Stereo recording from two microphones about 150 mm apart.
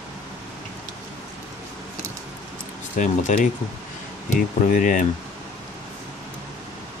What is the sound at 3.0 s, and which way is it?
Speech, 55° left (ahead or behind).